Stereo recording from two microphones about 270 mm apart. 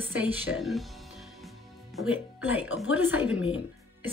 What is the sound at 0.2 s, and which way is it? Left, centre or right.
Speech, centre.